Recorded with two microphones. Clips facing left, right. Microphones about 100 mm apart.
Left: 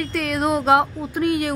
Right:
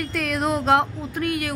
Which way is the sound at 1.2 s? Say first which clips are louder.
Left 5 dB; 20° left (ahead or behind).